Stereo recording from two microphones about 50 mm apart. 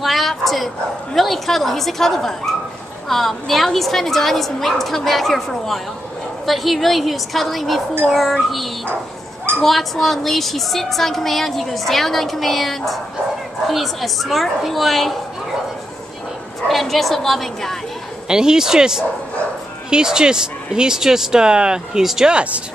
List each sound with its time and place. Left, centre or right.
0.0 s a sound: centre
1.1 s a woman's voice: centre
16.6 s a woman's voice: centre
18.3 s speech: centre
22.3 s speech: right